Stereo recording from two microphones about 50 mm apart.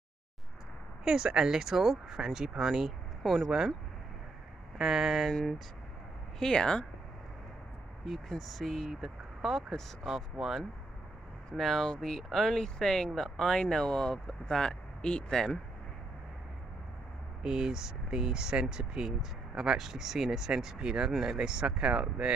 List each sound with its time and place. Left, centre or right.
1.0 s speech: centre
4.7 s speech: centre
5.3 s speech: centre
8.0 s speech: centre
11.5 s speech: centre
17.4 s speech: centre